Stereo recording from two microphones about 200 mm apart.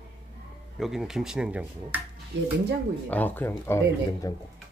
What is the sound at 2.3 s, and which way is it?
Speech, 65° right (ahead or behind).